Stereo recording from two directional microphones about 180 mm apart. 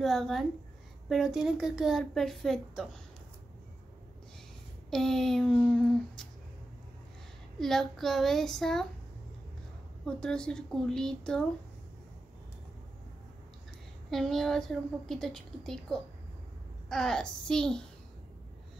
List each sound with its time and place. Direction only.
0.0 s a woman's voice: centre (ahead or behind)
4.9 s a woman's voice: centre (ahead or behind)
7.5 s a woman's voice: centre (ahead or behind)
10.0 s a woman's voice: 5° left (ahead or behind)
14.1 s a woman's voice: centre (ahead or behind)